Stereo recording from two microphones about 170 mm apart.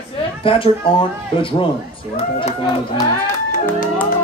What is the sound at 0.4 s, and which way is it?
Speech, 30° left (ahead or behind).